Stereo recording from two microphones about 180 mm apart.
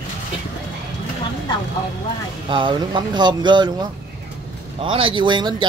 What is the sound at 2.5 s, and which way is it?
Speech, 30° right (ahead or behind).